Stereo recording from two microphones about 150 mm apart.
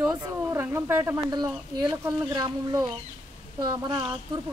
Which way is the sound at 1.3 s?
30° right (ahead or behind).